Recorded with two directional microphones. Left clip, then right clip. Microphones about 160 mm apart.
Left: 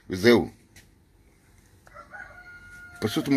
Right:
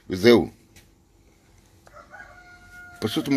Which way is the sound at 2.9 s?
5° left (ahead or behind).